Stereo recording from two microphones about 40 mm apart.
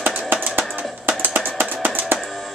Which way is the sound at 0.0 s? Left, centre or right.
Right.